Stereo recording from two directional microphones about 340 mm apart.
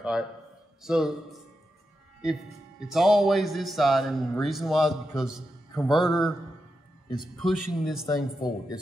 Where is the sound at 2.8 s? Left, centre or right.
Centre.